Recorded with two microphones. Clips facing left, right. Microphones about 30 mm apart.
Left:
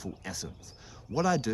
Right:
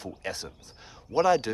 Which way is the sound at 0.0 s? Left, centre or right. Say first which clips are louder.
Right 4 dB; right.